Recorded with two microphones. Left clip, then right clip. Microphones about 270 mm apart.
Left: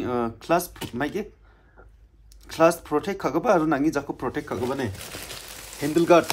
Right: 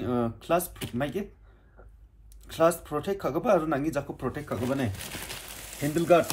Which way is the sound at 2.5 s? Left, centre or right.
Left.